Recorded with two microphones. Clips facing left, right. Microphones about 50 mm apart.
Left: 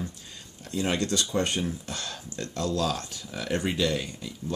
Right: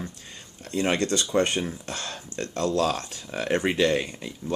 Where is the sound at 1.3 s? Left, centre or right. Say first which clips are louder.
Right 4 dB; right.